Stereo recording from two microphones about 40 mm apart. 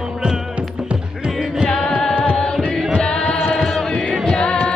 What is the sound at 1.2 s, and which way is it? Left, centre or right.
Music, right.